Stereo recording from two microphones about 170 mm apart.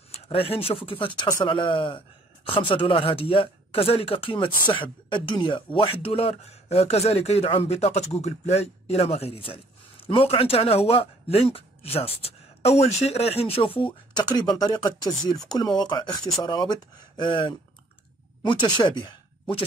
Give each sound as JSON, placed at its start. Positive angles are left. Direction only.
{"t": 0.1, "sound": "speech", "side_deg": 35}